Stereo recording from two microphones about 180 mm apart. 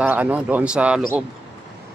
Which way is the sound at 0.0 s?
10° right (ahead or behind).